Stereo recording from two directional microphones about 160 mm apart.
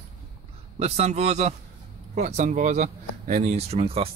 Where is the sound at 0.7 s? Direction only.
40° right (ahead or behind).